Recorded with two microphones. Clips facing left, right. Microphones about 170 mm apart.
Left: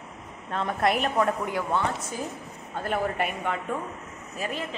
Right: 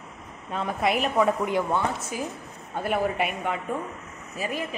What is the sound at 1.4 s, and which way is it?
A woman's voice, 15° right (ahead or behind).